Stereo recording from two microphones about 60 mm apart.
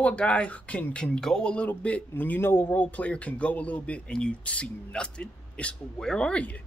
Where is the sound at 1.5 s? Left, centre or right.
Left.